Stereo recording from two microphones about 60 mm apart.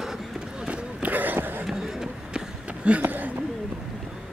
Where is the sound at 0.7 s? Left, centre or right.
Right.